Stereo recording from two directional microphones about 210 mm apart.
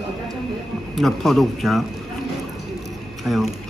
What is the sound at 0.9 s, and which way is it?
Speech, centre (ahead or behind).